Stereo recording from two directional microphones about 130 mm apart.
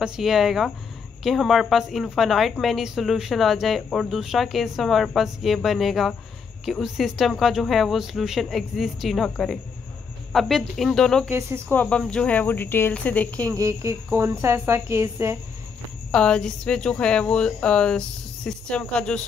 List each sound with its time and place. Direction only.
0.0 s a woman's voice: 5° right (ahead or behind)
11.2 s speech: 20° right (ahead or behind)
11.7 s speech: 10° left (ahead or behind)
13.5 s speech: 25° right (ahead or behind)
16.1 s speech: 5° left (ahead or behind)